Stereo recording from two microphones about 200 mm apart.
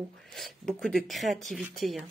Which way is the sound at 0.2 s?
Centre (ahead or behind).